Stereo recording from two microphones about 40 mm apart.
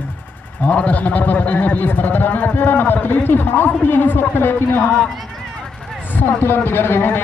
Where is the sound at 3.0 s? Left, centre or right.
Left.